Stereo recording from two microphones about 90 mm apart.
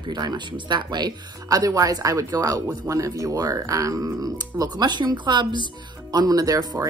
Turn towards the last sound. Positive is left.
turn(degrees=-40)  # may be behind; listen again after turning